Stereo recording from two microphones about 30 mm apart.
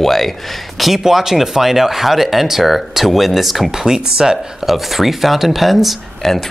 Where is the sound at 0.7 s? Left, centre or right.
Centre.